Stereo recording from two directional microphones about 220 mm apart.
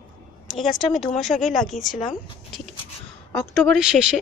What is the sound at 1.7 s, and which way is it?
Speech, 35° left (ahead or behind).